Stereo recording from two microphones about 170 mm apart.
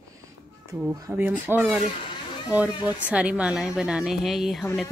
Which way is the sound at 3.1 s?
5° right (ahead or behind).